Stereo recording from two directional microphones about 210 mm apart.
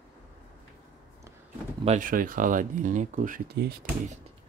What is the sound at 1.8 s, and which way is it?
Speech, 40° right (ahead or behind).